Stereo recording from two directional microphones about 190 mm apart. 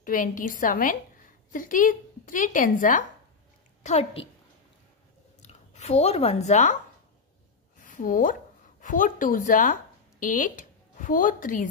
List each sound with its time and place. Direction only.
0.0 s speech: 45° left (ahead or behind)
3.8 s a woman's voice: 35° left (ahead or behind)
5.4 s speech: 35° left (ahead or behind)
7.8 s speech: 45° left (ahead or behind)